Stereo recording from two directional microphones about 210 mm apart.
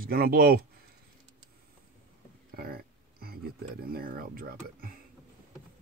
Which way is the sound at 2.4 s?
45° right (ahead or behind).